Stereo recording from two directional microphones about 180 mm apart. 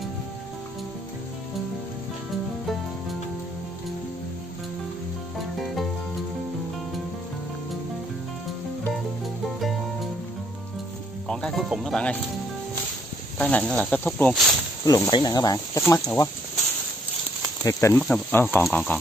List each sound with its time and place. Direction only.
11.2 s speech: centre (ahead or behind)
13.4 s speech: 5° left (ahead or behind)
14.9 s speech: 25° left (ahead or behind)
17.6 s speech: 15° left (ahead or behind)